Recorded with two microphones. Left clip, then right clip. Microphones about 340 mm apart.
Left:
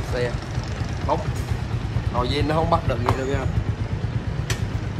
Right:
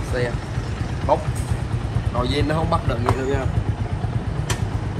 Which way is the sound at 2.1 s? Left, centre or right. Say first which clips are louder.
Even; centre.